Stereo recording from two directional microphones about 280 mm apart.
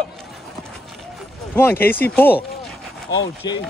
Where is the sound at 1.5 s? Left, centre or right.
Centre.